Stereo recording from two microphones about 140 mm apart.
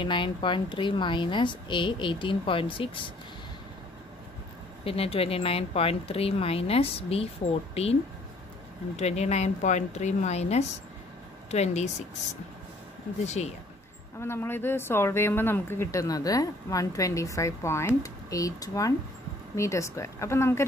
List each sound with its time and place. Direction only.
0.0 s speech: 35° left (ahead or behind)
4.8 s speech: 45° left (ahead or behind)
14.2 s speech: 15° left (ahead or behind)